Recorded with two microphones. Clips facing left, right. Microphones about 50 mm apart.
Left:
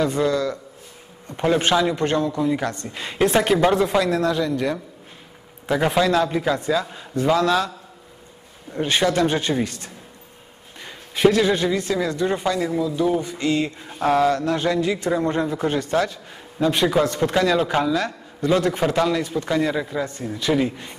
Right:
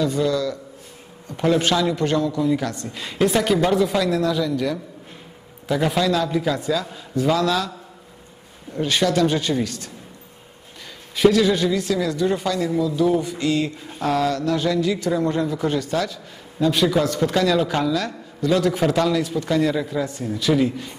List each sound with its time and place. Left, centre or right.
0.0 s a man's voice: left
1.3 s a man's voice: centre
5.7 s a man's voice: left
8.7 s a man's voice: left
11.1 s a man's voice: left
13.9 s a man's voice: left